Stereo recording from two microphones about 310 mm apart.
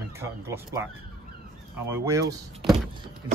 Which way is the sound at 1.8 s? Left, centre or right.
Centre.